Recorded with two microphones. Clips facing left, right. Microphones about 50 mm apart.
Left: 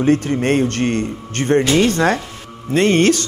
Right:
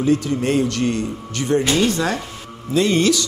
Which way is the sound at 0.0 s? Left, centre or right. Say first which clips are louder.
Left 3 dB; left.